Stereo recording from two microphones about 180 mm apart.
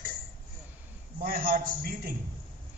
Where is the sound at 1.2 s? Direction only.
55° right (ahead or behind).